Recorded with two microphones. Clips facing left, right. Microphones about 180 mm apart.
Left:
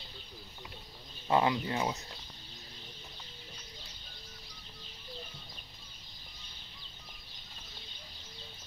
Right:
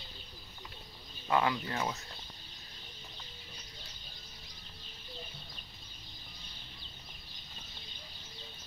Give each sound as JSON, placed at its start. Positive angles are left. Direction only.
{"t": 1.3, "sound": "speech", "side_deg": 20}